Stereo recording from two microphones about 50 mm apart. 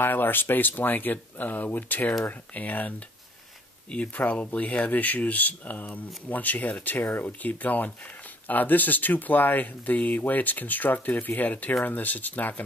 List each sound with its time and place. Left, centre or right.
0.0 s speech: left
4.1 s speech: left